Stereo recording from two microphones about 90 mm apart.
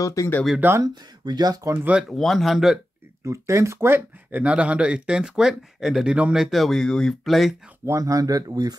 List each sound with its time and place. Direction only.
0.0 s speech: 35° left (ahead or behind)
0.6 s speech: 25° right (ahead or behind)
1.2 s speech: 50° right (ahead or behind)
2.0 s speech: 5° left (ahead or behind)
3.3 s speech: 35° right (ahead or behind)
4.4 s speech: 15° right (ahead or behind)
6.4 s speech: centre (ahead or behind)
7.8 s speech: 35° right (ahead or behind)